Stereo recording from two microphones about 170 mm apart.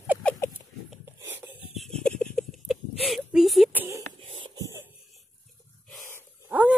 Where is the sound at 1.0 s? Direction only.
15° right (ahead or behind).